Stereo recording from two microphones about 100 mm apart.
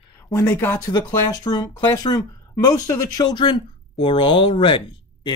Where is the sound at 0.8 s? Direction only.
40° left (ahead or behind).